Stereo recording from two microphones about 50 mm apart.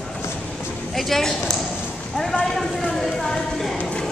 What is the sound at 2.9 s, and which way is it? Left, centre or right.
Speech, centre.